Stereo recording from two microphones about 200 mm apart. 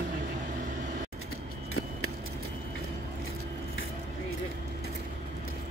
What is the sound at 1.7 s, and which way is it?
Vehicle, 90° left.